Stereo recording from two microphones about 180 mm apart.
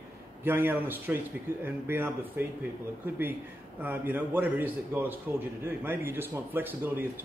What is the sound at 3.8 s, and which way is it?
Speech, 10° right (ahead or behind).